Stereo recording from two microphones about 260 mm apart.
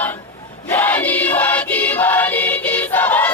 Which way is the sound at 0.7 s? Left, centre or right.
Centre.